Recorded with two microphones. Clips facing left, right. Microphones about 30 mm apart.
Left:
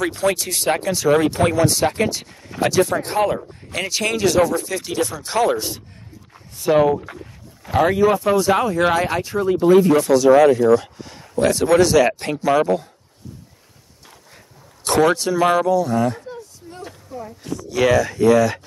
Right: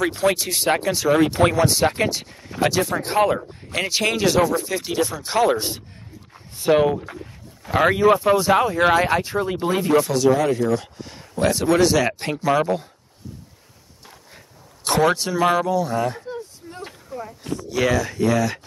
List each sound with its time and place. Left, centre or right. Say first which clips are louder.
0.0 s speech: even; centre
5.6 s speech: even; right
6.7 s speech: left 2 dB; centre
7.0 s a sound: even; centre
7.8 s speech: even; right
8.3 s speech: even; centre
9.2 s speech: left 5 dB; right
9.8 s speech: left 4 dB; centre
14.9 s speech: left 2 dB; centre
16.3 s a sound: right 2 dB; centre
17.6 s speech: left 4 dB; centre